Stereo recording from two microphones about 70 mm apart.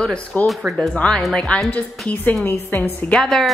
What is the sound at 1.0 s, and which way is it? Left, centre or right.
A woman's voice, centre.